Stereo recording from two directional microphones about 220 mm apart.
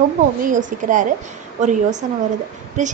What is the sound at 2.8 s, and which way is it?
Speech, 35° right (ahead or behind).